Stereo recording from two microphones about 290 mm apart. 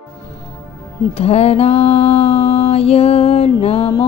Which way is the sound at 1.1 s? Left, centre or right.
Left.